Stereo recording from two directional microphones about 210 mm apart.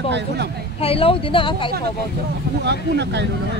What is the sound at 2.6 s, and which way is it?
Speech, 55° right (ahead or behind).